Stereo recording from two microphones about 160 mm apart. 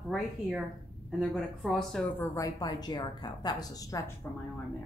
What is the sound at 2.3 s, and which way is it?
A woman's voice, 20° left (ahead or behind).